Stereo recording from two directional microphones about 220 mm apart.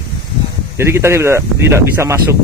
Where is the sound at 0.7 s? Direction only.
10° right (ahead or behind).